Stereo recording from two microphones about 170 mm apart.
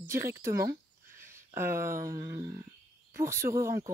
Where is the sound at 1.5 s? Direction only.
15° right (ahead or behind).